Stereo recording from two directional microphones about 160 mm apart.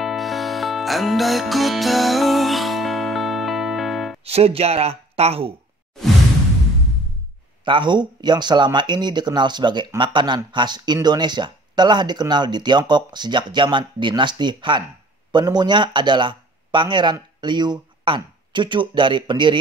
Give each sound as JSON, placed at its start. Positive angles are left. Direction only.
{"t": 0.0, "sound": "music", "side_deg": 0}
{"t": 4.2, "sound": "speech", "side_deg": -40}
{"t": 7.6, "sound": "speech", "side_deg": -30}